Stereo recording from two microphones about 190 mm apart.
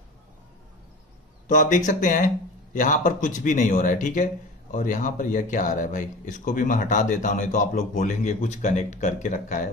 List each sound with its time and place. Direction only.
1.5 s speech: 40° left (ahead or behind)